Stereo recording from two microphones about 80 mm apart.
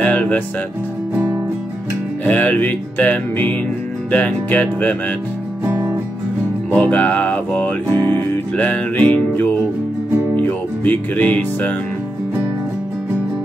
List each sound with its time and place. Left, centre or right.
0.0 s music: left
2.2 s music: centre
6.7 s music: left